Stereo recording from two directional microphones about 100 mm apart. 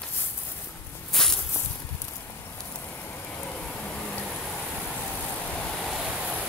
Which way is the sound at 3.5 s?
10° left (ahead or behind).